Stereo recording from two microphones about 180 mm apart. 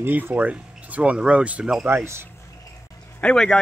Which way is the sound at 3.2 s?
5° left (ahead or behind).